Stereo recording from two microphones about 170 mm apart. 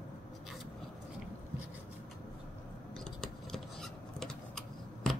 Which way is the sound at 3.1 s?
Centre (ahead or behind).